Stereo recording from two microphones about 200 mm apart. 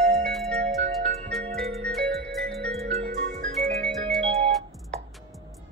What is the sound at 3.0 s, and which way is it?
Music, 50° right (ahead or behind).